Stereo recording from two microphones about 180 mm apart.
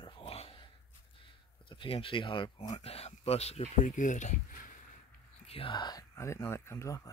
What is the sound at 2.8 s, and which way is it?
Speech, 35° left (ahead or behind).